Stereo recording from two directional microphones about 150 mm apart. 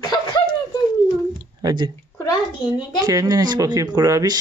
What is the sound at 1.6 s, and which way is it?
Speech, 30° right (ahead or behind).